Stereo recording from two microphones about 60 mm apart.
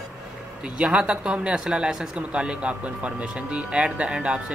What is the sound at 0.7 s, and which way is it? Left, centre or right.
Speech, centre.